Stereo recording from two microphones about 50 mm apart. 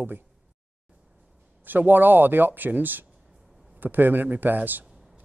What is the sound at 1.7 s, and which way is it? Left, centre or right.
Speech, right.